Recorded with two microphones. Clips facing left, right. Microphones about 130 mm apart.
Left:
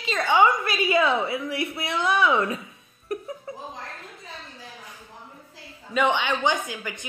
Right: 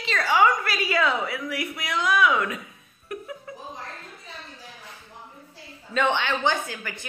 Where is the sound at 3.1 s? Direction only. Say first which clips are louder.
Left 4 dB; 35° left (ahead or behind).